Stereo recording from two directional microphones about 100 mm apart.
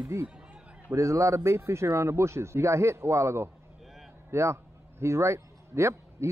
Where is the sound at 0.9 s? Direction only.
30° right (ahead or behind).